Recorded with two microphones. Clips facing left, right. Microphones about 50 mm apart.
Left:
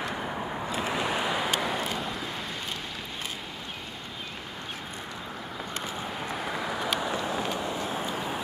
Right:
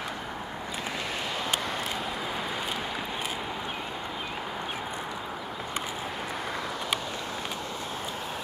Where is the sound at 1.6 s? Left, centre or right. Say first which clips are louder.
Left 2 dB; centre.